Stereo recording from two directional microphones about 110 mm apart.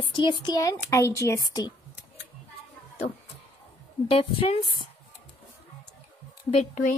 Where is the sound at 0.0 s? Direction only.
45° left (ahead or behind).